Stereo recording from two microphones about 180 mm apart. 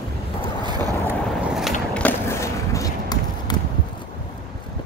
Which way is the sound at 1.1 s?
Centre (ahead or behind).